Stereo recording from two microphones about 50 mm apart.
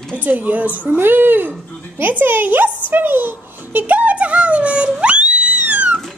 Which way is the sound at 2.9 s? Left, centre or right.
Right.